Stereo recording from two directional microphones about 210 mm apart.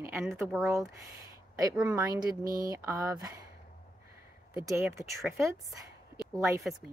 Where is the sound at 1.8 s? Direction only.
5° right (ahead or behind).